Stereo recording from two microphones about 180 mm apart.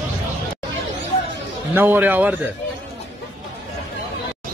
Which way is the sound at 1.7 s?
10° right (ahead or behind).